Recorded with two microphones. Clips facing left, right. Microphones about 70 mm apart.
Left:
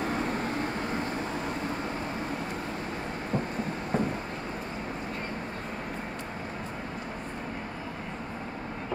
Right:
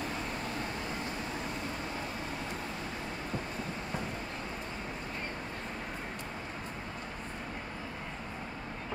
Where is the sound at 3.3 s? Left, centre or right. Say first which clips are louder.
Left 9 dB; left.